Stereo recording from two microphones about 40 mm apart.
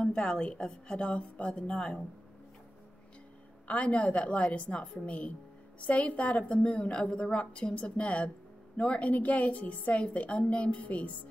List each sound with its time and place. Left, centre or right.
0.0 s a sound: centre
0.7 s a woman's voice: left
3.6 s a woman's voice: left